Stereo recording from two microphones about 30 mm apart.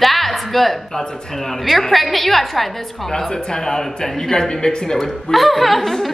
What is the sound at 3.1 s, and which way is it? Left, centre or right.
A woman's voice, left.